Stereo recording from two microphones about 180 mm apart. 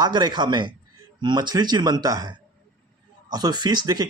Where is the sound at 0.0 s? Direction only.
25° right (ahead or behind).